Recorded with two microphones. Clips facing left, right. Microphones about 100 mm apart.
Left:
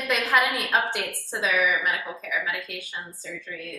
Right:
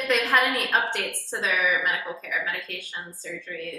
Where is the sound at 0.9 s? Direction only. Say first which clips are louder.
Even; 10° left (ahead or behind).